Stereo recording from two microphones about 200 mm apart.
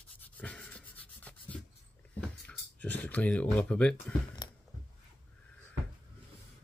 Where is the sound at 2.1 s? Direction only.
5° left (ahead or behind).